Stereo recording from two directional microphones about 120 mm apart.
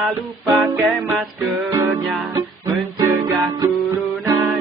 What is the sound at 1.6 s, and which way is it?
Music, 20° right (ahead or behind).